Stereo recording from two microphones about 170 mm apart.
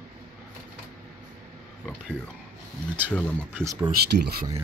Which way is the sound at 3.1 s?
10° left (ahead or behind).